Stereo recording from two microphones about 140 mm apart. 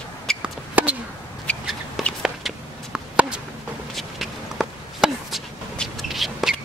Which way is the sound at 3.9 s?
Centre (ahead or behind).